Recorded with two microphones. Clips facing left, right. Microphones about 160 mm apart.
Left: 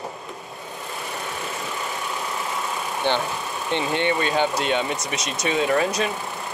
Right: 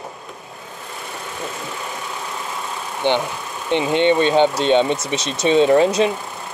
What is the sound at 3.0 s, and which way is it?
Speech, 20° right (ahead or behind).